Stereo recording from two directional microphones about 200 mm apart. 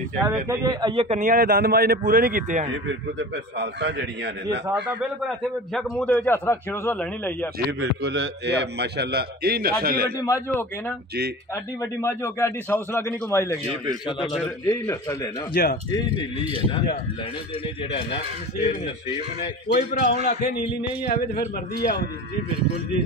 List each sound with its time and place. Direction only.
0.2 s a man's voice: 10° right (ahead or behind); by 1.2 s 30° right (ahead or behind)
1.2 s a man's voice: 45° right (ahead or behind)
3.2 s a man's voice: 55° right (ahead or behind)
5.8 s a man's voice: 5° left (ahead or behind)
7.8 s a man's voice: 60° right (ahead or behind)
10.2 s a man's voice: 15° left (ahead or behind)
11.8 s a man's voice: 15° left (ahead or behind)
14.7 s a man's voice: 15° left (ahead or behind)
15.5 s a man's voice: 50° left (ahead or behind)
17.9 s a man's voice: 30° left (ahead or behind)
21.4 s a man's voice: 50° left (ahead or behind)